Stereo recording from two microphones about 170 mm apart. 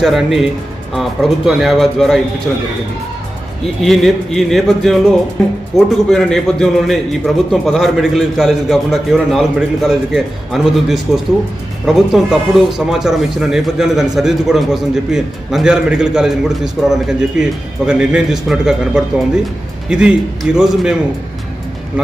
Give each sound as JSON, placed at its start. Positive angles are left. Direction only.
{"t": 0.0, "sound": "speech", "side_deg": 0}
{"t": 3.8, "sound": "speech", "side_deg": 0}